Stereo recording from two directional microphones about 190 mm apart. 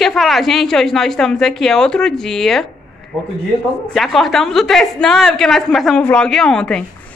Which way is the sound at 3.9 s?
Centre (ahead or behind).